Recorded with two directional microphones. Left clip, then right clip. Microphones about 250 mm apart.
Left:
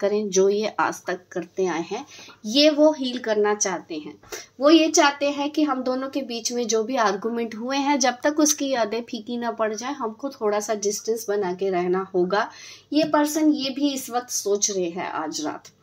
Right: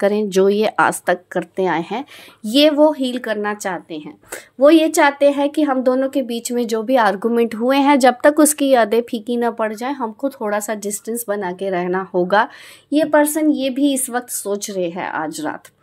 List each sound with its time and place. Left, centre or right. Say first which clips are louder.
0.0 s speech: right 5 dB; right